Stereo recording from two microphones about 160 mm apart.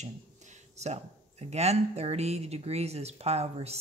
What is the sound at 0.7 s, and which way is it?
Speech, 45° right (ahead or behind).